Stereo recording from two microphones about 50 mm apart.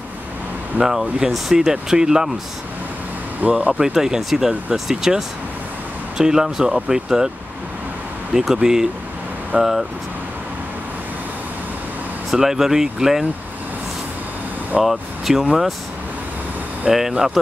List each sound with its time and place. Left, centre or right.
0.7 s speech: centre
3.4 s speech: right
3.8 s speech: centre
8.3 s speech: centre
12.4 s speech: centre
14.8 s speech: centre
16.8 s speech: centre